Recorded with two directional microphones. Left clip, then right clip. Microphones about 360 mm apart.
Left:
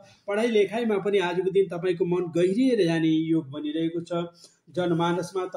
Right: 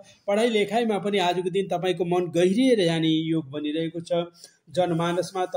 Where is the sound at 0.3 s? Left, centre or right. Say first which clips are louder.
Right 1 dB; right.